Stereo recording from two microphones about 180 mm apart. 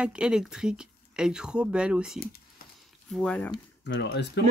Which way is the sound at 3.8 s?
70° left (ahead or behind).